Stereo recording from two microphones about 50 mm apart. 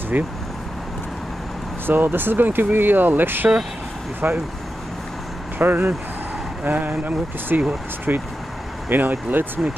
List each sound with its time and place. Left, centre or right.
0.1 s speech: right
1.9 s speech: right
5.6 s speech: right